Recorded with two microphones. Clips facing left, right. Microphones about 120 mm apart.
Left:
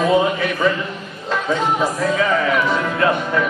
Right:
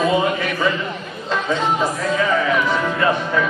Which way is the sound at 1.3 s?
5° left (ahead or behind).